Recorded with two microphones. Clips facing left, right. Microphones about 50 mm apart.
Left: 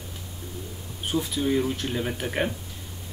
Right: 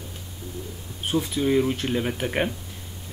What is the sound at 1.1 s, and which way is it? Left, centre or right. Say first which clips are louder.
Speech: right 2 dB; right.